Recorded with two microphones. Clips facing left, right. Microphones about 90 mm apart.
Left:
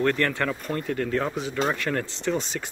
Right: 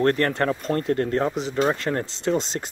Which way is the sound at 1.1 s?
35° right (ahead or behind).